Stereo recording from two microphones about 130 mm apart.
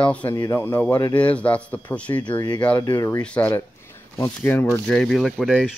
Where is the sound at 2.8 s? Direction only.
25° left (ahead or behind).